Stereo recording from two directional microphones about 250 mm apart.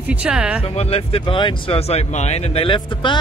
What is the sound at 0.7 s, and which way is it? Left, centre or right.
Speech, left.